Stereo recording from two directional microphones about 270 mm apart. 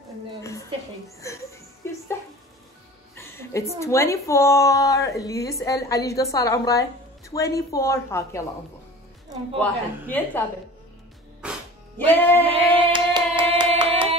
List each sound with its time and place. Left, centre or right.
0.4 s a sound: centre
1.0 s a woman's voice: centre
3.2 s a woman's voice: centre
9.6 s a woman's voice: centre
11.4 s music: centre
12.0 s a woman's voice: centre
12.9 s hands: centre